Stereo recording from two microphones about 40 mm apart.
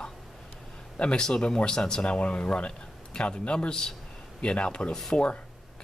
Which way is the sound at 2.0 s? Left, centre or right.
Left.